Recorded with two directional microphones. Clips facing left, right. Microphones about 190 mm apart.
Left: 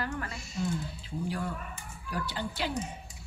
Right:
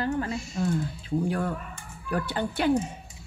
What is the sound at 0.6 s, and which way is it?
Speech, 55° right (ahead or behind).